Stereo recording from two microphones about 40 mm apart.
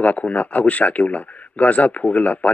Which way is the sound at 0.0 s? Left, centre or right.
Left.